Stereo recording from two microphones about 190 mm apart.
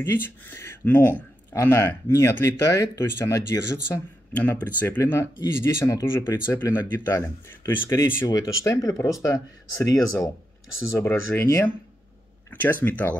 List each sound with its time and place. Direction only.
0.0 s a man's voice: 10° left (ahead or behind)